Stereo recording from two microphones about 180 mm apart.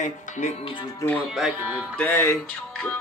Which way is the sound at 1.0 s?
5° left (ahead or behind).